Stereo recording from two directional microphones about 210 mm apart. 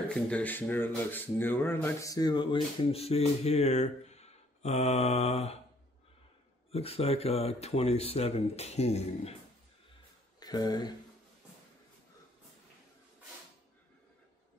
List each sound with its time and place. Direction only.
0.1 s speech: 5° left (ahead or behind); by 5.6 s 30° left (ahead or behind)
6.7 s speech: 30° left (ahead or behind)
10.4 s speech: 20° left (ahead or behind)